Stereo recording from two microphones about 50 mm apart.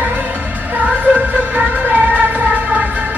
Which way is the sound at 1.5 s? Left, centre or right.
Right.